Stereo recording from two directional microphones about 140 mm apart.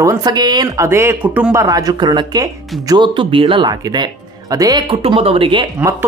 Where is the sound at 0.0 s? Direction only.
25° right (ahead or behind).